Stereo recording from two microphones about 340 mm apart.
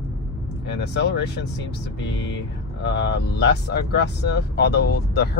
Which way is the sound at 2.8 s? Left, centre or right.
Left.